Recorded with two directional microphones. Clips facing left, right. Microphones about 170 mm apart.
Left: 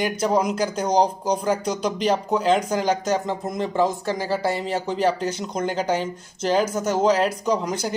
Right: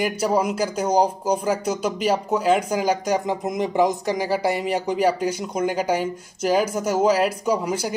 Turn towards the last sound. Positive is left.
turn(degrees=-10)  # may be behind; listen again after turning